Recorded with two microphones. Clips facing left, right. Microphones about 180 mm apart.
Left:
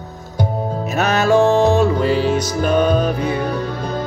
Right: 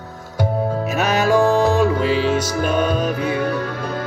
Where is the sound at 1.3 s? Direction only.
25° left (ahead or behind).